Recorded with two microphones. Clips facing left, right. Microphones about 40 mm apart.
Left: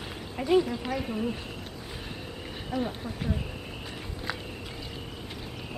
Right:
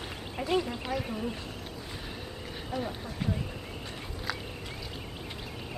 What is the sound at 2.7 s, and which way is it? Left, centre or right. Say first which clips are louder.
Speech: left 4 dB; centre.